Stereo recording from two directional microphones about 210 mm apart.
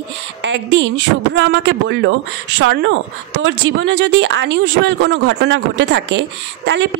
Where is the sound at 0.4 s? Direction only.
60° right (ahead or behind).